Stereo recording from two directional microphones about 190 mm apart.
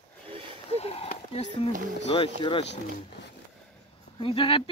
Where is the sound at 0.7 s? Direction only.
30° left (ahead or behind).